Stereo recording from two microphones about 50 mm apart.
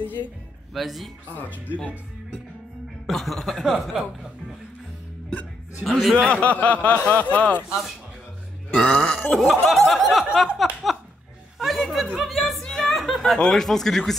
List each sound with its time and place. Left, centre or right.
0.0 s speech: left
0.7 s snicker: centre
1.3 s speech: left
3.1 s snicker: centre
5.9 s snicker: centre
6.1 s speech: centre
8.7 s a sound: left
9.3 s speech: centre
9.7 s snicker: centre
11.5 s a sound: centre
13.4 s speech: centre